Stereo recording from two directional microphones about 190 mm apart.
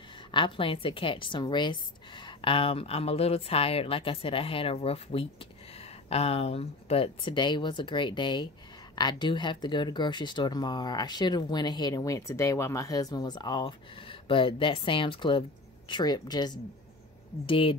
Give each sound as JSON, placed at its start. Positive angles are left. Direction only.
{"t": 0.3, "sound": "speech", "side_deg": 25}